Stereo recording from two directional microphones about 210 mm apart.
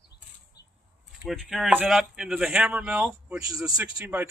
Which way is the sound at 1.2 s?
Centre (ahead or behind).